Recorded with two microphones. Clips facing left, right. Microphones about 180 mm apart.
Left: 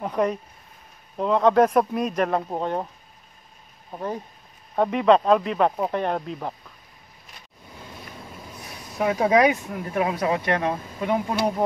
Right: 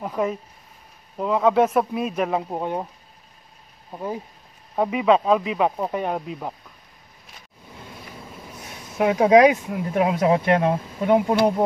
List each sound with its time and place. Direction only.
0.0 s speech: centre (ahead or behind)
3.9 s speech: 10° right (ahead or behind)
8.6 s speech: 20° right (ahead or behind)